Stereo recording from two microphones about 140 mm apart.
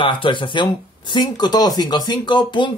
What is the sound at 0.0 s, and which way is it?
Speech, 35° left (ahead or behind).